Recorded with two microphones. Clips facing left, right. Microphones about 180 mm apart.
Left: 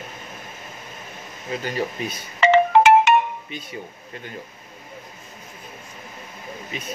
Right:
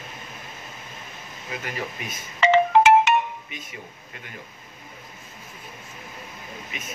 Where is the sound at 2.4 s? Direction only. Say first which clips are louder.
Left 2 dB; 55° left (ahead or behind).